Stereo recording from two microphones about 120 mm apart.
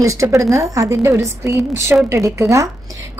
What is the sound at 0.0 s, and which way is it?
A woman's voice, 25° right (ahead or behind).